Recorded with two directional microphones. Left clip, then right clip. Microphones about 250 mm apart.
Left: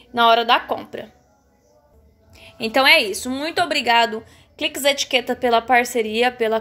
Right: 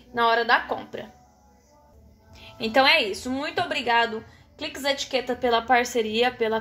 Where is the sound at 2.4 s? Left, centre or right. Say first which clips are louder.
Left 3 dB; left.